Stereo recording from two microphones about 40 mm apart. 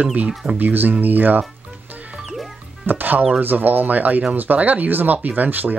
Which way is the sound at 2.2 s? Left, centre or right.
Centre.